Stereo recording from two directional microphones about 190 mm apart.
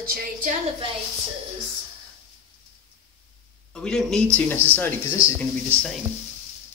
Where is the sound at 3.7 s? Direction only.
5° left (ahead or behind).